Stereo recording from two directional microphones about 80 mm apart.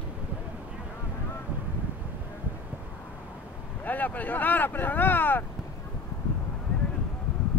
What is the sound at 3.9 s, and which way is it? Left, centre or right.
Speech, left.